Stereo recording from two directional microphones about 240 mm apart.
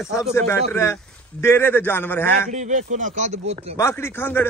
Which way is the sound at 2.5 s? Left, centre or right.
Right.